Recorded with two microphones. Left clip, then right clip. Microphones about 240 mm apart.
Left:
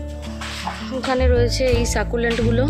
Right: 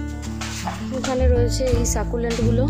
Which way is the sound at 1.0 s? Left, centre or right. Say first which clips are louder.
Left 3 dB; centre.